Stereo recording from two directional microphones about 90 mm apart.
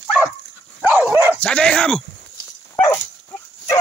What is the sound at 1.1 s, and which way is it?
Dog, 20° right (ahead or behind).